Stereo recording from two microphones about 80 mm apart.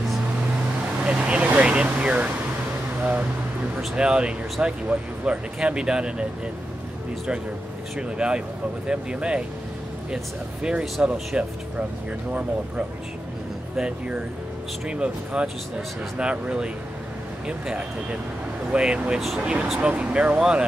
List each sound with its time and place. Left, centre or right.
1.0 s vehicle: centre
3.0 s speech: centre
8.2 s speech: centre